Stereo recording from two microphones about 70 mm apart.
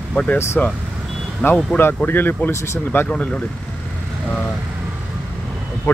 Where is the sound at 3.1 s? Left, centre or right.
Centre.